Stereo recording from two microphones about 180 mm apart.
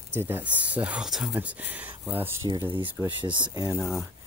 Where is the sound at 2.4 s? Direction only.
25° right (ahead or behind).